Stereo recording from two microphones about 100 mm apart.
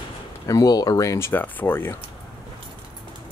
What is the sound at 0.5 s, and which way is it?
Speech, 40° left (ahead or behind).